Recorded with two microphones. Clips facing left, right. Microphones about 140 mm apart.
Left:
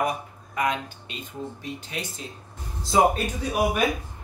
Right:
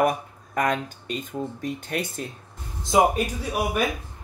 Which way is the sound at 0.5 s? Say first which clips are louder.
Right 2 dB; 45° right (ahead or behind).